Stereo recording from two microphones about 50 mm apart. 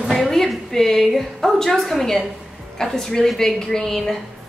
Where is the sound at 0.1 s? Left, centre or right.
Centre.